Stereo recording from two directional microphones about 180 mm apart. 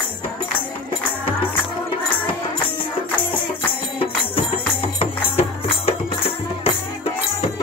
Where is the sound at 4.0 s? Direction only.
30° left (ahead or behind).